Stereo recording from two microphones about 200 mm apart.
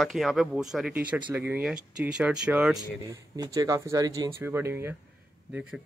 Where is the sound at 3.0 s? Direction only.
15° right (ahead or behind).